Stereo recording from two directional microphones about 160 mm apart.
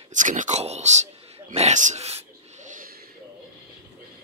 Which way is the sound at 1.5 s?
45° right (ahead or behind).